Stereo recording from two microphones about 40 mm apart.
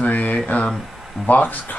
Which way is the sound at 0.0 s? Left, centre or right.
Left.